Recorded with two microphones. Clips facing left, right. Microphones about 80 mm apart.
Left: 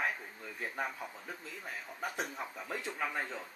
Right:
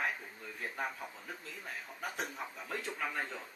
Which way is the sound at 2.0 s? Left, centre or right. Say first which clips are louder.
Left 2 dB; centre.